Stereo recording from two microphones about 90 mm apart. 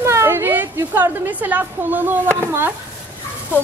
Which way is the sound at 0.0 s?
30° right (ahead or behind).